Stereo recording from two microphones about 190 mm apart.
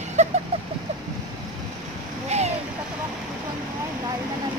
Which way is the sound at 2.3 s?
35° right (ahead or behind).